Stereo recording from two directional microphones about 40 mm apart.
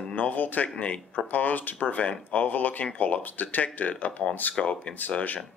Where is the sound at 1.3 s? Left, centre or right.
Left.